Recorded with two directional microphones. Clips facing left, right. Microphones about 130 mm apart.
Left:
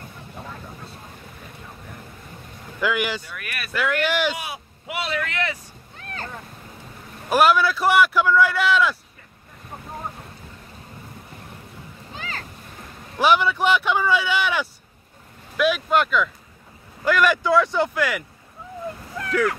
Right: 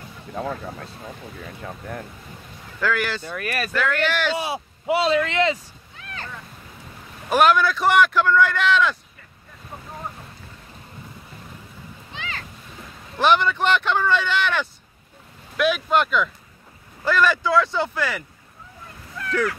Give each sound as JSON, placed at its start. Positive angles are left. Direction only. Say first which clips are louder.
{"t": 1.6, "sound": "speech", "louder": "right 10 dB", "side_deg": -70}
{"t": 2.8, "sound": "speech", "louder": "even", "side_deg": 15}
{"t": 3.3, "sound": "speech", "louder": "right 8 dB", "side_deg": -35}
{"t": 3.7, "sound": "speech", "louder": "left 2 dB", "side_deg": 10}
{"t": 4.4, "sound": "speech", "louder": "right 7 dB", "side_deg": -30}
{"t": 5.9, "sound": "a sound", "louder": "left 2 dB", "side_deg": 40}
{"t": 7.2, "sound": "speech", "louder": "even", "side_deg": 5}
{"t": 12.1, "sound": "a sound", "louder": "even", "side_deg": 40}
{"t": 13.2, "sound": "speech", "louder": "even", "side_deg": 10}
{"t": 17.0, "sound": "speech", "louder": "left 1 dB", "side_deg": 15}